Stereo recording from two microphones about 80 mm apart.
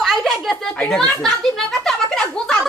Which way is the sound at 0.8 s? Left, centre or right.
Centre.